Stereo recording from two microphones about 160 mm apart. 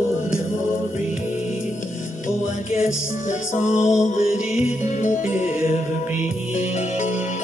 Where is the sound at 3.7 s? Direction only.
5° right (ahead or behind).